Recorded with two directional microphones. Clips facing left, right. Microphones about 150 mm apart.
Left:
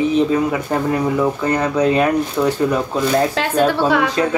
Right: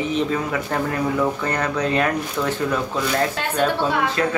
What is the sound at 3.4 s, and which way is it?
Speech, 90° left.